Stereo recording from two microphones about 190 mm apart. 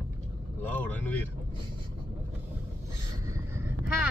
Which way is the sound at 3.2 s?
15° right (ahead or behind).